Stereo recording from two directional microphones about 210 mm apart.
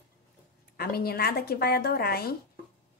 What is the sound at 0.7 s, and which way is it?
Speech, 45° left (ahead or behind).